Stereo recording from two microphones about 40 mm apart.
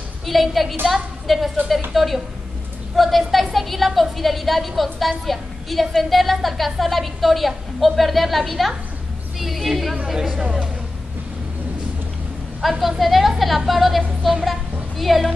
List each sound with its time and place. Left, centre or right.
0.3 s a woman's voice: centre
10.0 s speech: centre
12.8 s a woman's voice: centre